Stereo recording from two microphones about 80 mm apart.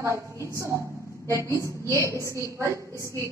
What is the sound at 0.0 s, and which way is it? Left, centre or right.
A woman's voice, right.